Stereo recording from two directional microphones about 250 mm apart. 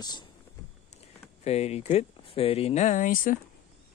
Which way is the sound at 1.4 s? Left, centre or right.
Left.